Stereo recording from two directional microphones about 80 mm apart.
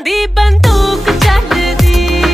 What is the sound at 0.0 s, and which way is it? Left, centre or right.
Music, centre.